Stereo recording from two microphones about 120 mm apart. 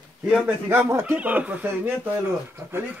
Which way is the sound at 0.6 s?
20° right (ahead or behind).